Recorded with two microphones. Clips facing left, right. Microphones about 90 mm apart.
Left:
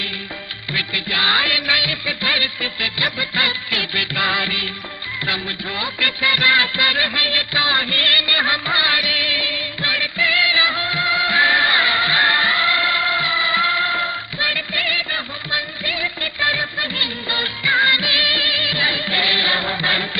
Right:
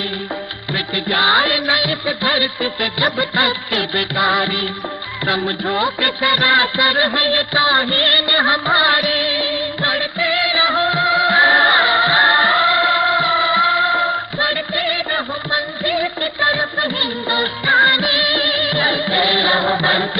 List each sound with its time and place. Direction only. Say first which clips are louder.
0.7 s music: right 5 dB; 35° right (ahead or behind)
4.4 s music: right 6 dB; 45° right (ahead or behind)
19.7 s chant: right 6 dB; 30° right (ahead or behind)